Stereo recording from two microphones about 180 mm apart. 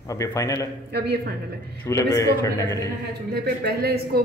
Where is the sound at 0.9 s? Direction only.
65° right (ahead or behind).